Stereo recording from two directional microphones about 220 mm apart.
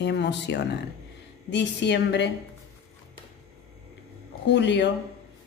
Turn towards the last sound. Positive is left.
turn(degrees=50)  # may be behind; listen again after turning